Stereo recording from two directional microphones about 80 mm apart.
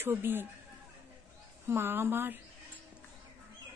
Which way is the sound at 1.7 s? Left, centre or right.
Right.